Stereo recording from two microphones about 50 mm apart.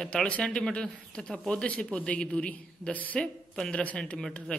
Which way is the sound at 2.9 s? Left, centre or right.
Left.